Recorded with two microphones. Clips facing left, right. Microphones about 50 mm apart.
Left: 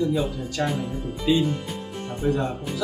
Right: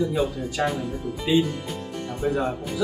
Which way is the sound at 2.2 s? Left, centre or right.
Centre.